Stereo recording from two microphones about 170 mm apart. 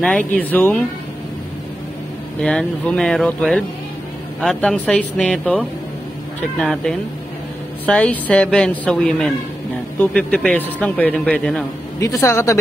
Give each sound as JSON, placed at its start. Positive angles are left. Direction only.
{"t": 0.0, "sound": "a man's voice", "side_deg": 5}
{"t": 2.4, "sound": "a man's voice", "side_deg": 5}
{"t": 6.6, "sound": "a man's voice", "side_deg": 5}
{"t": 12.0, "sound": "speech", "side_deg": 20}